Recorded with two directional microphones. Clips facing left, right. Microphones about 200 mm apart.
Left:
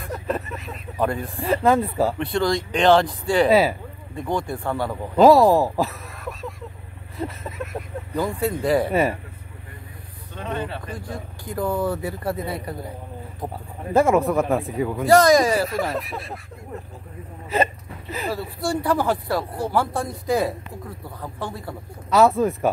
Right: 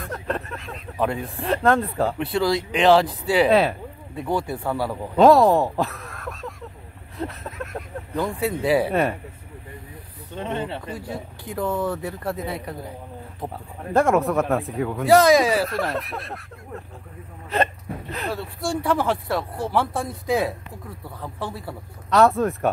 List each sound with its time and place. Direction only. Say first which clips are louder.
0.0 s speech: left 1 dB; centre (ahead or behind)
10.3 s speech: right 1 dB; 25° right (ahead or behind)
10.9 s speech: right 1 dB; 5° right (ahead or behind)